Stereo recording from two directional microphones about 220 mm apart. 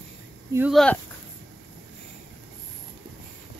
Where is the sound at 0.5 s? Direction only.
10° right (ahead or behind).